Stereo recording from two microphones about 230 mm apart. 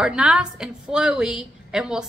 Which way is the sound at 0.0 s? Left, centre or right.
Centre.